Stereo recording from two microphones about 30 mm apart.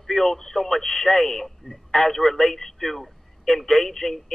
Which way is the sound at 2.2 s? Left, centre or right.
Left.